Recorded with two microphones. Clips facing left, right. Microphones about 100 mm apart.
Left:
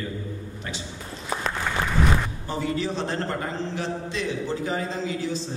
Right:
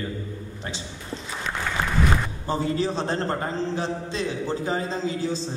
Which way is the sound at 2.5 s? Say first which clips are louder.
Right 3 dB; 30° right (ahead or behind).